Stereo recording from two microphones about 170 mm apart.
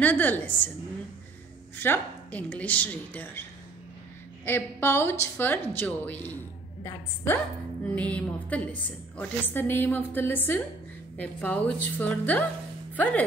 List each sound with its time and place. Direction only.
0.0 s a woman's voice: 10° left (ahead or behind)
1.8 s a woman's voice: 10° left (ahead or behind)
4.5 s a woman's voice: 15° left (ahead or behind)
7.9 s a woman's voice: 10° left (ahead or behind)